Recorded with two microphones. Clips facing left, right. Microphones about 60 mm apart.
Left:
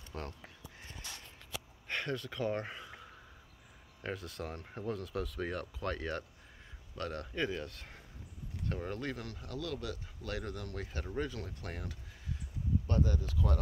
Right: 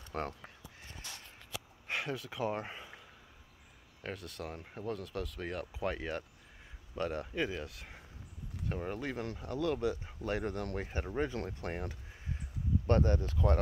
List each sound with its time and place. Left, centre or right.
1.9 s speech: centre
4.0 s speech: centre
5.8 s speech: centre
9.1 s speech: right
10.8 s speech: right
12.8 s speech: right